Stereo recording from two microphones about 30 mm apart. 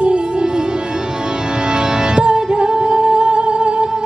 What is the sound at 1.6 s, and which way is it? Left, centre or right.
Music, right.